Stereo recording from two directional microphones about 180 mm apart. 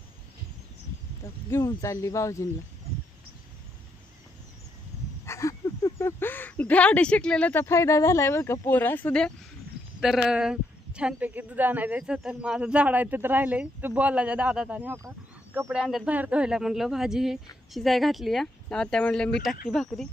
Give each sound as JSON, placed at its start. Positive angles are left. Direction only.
{"t": 1.2, "sound": "speech", "side_deg": 15}
{"t": 5.2, "sound": "speech", "side_deg": 15}
{"t": 15.0, "sound": "a sound", "side_deg": -15}
{"t": 15.7, "sound": "speech", "side_deg": -5}